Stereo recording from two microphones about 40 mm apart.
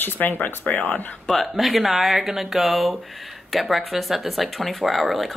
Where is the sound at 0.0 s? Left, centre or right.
Left.